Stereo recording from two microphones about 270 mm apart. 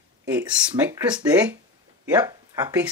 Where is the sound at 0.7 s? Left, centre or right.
Centre.